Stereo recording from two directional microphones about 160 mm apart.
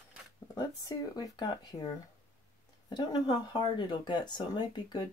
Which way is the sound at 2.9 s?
25° left (ahead or behind).